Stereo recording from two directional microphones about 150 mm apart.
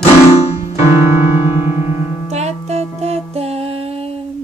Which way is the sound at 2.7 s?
45° right (ahead or behind).